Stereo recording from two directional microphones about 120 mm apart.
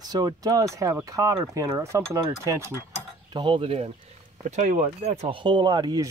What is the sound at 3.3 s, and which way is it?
Speech, 45° right (ahead or behind).